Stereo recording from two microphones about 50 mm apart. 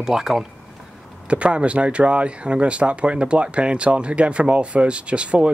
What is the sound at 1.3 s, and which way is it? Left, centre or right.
Speech, right.